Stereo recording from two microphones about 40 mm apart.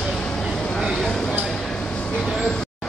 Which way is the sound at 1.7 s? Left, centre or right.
Left.